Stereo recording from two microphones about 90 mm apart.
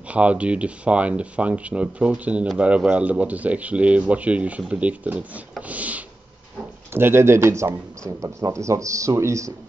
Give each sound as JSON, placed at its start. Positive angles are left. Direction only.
{"t": 0.1, "sound": "speech", "side_deg": -15}
{"t": 5.6, "sound": "a sound", "side_deg": -15}
{"t": 6.9, "sound": "speech", "side_deg": -25}